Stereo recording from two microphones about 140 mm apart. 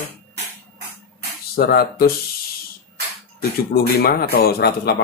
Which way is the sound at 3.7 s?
90° left.